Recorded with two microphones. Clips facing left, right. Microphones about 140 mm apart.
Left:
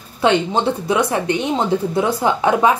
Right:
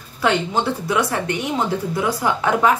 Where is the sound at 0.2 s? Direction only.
20° left (ahead or behind).